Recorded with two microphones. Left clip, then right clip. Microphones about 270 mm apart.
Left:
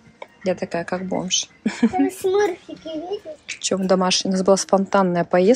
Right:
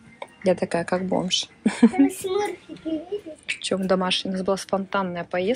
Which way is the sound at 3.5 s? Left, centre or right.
Centre.